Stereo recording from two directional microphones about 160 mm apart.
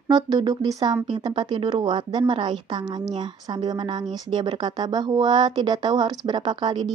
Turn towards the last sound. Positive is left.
turn(degrees=-30)  # may be behind; listen again after turning